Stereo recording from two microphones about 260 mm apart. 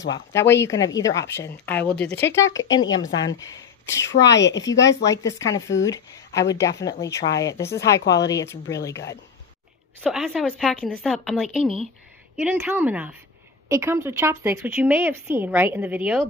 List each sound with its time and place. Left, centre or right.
0.1 s speech: centre
4.3 s speech: left
5.9 s speech: centre
10.1 s speech: centre